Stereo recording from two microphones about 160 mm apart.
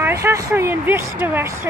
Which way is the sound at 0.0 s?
15° right (ahead or behind).